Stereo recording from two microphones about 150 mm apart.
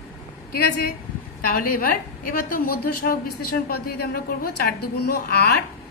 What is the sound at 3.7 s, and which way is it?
A woman's voice, 90° left.